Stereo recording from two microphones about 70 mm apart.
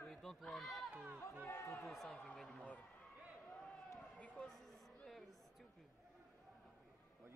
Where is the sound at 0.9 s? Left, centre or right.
Right.